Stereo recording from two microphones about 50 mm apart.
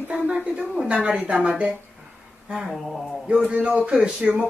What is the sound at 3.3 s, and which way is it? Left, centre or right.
Speech, right.